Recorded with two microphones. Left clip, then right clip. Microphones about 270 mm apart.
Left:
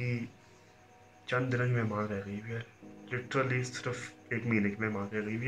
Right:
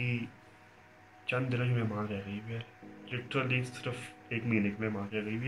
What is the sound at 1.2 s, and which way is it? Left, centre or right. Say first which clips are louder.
A man's voice: left 2 dB; centre.